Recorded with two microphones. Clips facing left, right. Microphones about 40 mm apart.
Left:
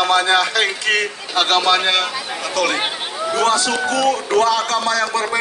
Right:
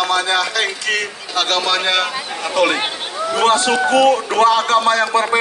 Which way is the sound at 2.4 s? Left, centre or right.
Right.